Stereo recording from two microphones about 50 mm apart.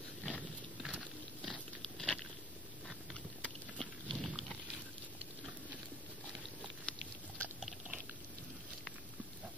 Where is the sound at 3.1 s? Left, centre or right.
Centre.